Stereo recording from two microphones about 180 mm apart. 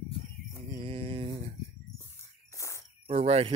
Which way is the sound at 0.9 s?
30° right (ahead or behind).